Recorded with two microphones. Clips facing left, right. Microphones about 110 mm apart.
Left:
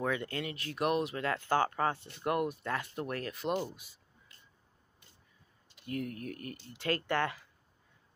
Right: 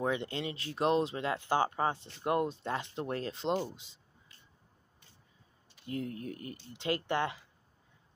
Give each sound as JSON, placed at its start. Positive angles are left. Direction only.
{"t": 0.0, "sound": "speech", "side_deg": -25}
{"t": 5.9, "sound": "speech", "side_deg": -25}